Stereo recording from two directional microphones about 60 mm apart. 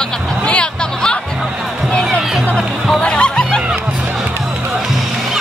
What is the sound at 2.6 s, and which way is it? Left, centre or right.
Music, centre.